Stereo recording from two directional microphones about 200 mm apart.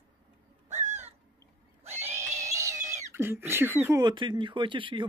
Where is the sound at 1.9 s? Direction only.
10° right (ahead or behind).